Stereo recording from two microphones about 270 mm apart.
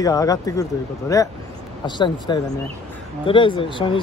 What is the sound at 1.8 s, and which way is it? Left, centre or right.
Speech, centre.